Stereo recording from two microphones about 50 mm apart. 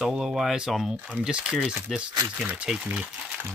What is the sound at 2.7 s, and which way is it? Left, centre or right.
Speech, centre.